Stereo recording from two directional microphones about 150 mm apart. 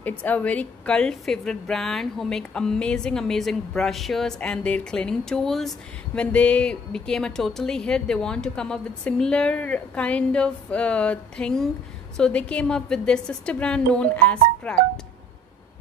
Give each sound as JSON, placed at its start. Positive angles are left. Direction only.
{"t": 0.0, "sound": "a woman's voice", "side_deg": 10}